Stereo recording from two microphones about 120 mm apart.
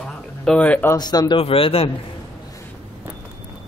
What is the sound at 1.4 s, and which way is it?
Speech, 50° left (ahead or behind).